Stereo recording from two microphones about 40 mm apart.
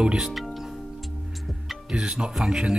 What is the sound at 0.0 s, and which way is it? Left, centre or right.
Speech, centre.